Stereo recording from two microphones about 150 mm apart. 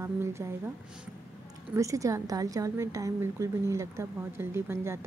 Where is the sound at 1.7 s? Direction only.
20° right (ahead or behind).